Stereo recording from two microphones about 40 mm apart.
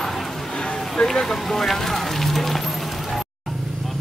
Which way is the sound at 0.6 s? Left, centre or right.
Centre.